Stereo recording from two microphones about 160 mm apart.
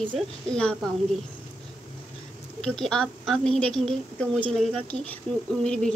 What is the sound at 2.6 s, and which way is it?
Speech, 5° left (ahead or behind).